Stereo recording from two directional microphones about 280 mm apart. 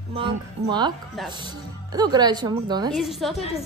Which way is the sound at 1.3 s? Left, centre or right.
Centre.